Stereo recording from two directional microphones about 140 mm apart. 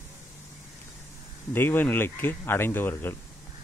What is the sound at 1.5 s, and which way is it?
Speech, 15° left (ahead or behind).